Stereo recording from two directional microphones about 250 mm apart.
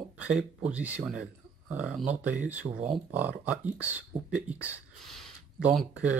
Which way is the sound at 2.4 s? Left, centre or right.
Right.